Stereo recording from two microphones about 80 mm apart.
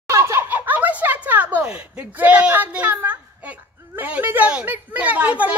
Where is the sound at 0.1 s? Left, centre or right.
Right.